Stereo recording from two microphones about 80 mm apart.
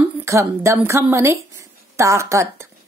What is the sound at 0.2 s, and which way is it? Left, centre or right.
A woman's voice, right.